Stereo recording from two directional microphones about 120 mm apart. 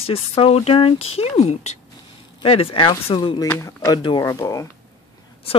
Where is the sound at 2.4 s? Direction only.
50° left (ahead or behind).